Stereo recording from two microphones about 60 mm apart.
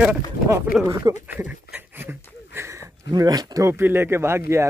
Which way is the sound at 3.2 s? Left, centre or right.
Right.